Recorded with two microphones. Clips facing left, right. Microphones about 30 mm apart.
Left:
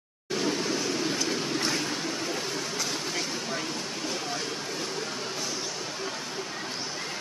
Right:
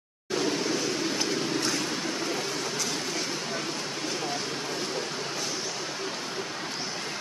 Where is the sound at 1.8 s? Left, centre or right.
Centre.